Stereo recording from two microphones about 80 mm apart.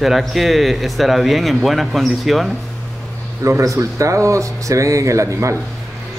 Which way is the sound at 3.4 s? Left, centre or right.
Right.